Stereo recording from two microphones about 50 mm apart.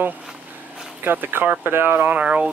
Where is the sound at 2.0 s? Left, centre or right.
Right.